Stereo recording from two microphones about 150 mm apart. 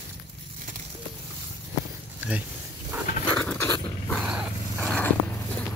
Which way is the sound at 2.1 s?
10° right (ahead or behind).